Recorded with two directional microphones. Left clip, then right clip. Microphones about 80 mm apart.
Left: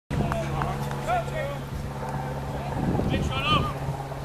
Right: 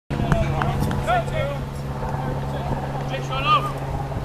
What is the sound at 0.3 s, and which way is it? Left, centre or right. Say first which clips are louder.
Run: right 7 dB; right.